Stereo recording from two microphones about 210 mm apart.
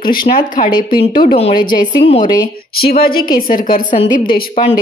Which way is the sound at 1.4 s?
25° left (ahead or behind).